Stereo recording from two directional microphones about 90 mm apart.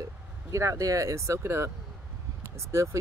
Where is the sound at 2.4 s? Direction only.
30° right (ahead or behind).